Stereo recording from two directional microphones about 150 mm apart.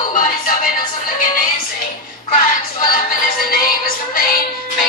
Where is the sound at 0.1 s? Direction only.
60° left (ahead or behind).